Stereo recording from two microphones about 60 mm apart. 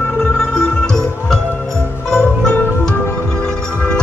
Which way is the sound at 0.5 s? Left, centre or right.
Centre.